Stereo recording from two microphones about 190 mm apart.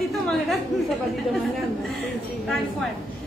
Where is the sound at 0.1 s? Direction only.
Centre (ahead or behind).